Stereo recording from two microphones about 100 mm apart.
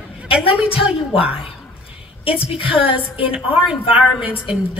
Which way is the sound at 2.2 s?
65° left (ahead or behind).